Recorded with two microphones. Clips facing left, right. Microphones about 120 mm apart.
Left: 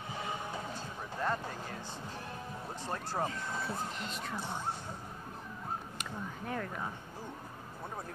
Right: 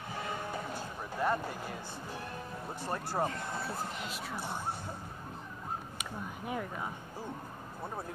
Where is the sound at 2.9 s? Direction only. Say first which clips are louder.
Right 2 dB; 10° right (ahead or behind).